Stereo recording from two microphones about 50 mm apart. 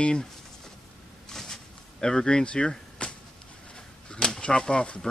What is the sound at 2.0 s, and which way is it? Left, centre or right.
Speech, centre.